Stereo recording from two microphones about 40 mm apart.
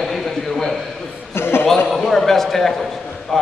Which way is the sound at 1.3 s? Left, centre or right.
Left.